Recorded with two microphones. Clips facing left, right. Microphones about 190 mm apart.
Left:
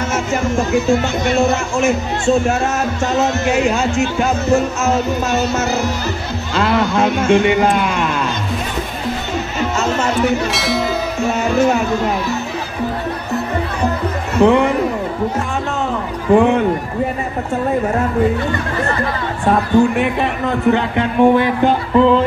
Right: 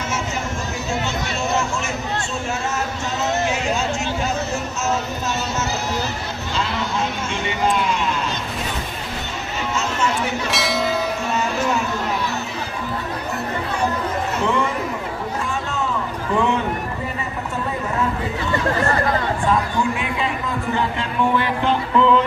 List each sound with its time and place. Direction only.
0.1 s speech: 50° left (ahead or behind)
10.5 s speech: centre (ahead or behind)
14.4 s speech: 60° left (ahead or behind)
16.3 s speech: 55° left (ahead or behind)
19.4 s speech: 65° left (ahead or behind); by 22.1 s 45° left (ahead or behind)